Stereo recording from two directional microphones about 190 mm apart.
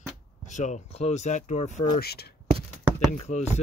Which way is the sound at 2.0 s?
55° left (ahead or behind).